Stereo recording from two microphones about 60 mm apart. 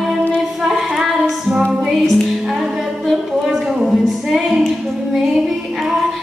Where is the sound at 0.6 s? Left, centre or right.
Centre.